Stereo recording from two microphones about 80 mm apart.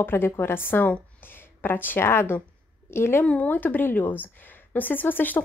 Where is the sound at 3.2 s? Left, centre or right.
Centre.